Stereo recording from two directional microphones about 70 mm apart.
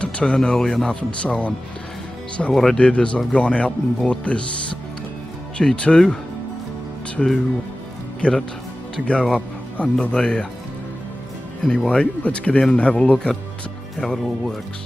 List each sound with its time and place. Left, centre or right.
0.0 s speech: centre
2.5 s speech: centre
5.6 s speech: centre
7.2 s speech: centre
11.6 s a man's voice: centre
13.9 s speech: centre